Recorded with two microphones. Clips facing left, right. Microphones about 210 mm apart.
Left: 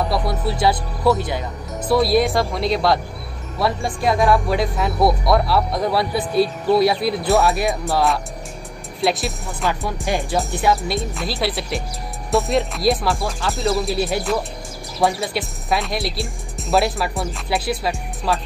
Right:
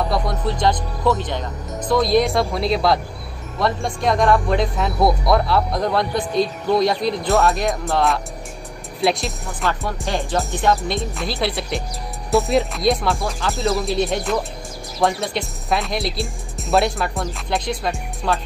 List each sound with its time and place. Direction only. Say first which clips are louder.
0.1 s speech: even; 5° left (ahead or behind)
1.9 s speech: even; 5° left (ahead or behind)
10.0 s speech: left 1 dB; 15° left (ahead or behind)
10.6 s speech: right 1 dB; centre (ahead or behind)